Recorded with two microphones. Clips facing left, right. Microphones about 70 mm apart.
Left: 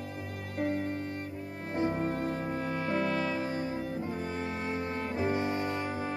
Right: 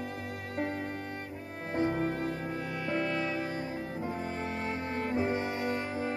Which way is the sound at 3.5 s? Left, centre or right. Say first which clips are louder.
Left 2 dB; right.